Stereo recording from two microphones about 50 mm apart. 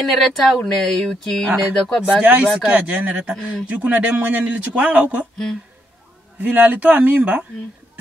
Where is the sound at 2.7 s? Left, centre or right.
Right.